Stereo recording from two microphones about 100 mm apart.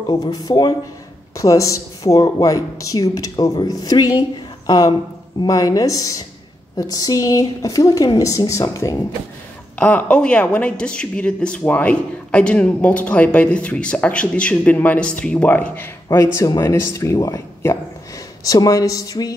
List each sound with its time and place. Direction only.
0.1 s speech: 40° left (ahead or behind)
9.8 s a woman's voice: 10° left (ahead or behind); by 19.3 s 35° left (ahead or behind)